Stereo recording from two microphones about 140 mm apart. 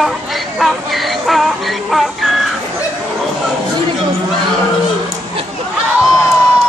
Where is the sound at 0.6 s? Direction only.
Centre (ahead or behind).